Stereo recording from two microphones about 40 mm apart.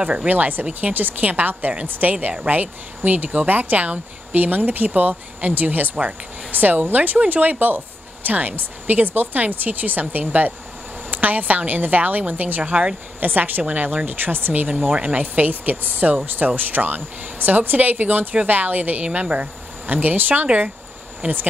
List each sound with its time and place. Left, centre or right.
0.0 s speech: right
0.3 s speech: right
14.7 s speech: right
19.0 s speech: right